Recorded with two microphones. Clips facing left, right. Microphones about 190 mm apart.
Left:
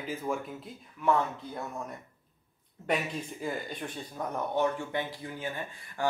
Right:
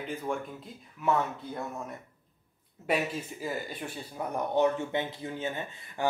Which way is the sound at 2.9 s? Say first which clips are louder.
Right 1 dB; 5° right (ahead or behind).